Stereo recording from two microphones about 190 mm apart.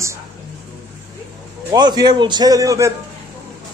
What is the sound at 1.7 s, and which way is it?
A man's voice, 20° right (ahead or behind).